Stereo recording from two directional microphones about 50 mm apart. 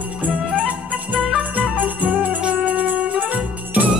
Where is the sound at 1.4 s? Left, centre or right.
Right.